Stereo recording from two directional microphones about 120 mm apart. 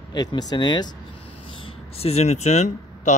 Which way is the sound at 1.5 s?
50° left (ahead or behind).